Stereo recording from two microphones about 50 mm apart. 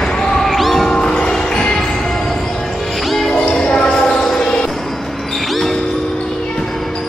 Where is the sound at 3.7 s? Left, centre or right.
Centre.